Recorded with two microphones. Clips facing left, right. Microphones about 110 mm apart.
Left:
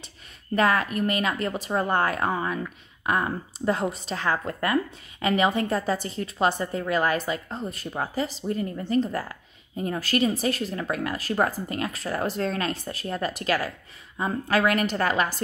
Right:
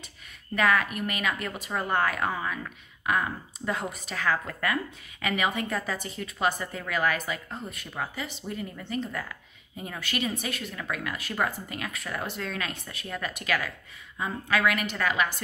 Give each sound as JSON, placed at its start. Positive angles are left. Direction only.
{"t": 0.6, "sound": "a woman's voice", "side_deg": 30}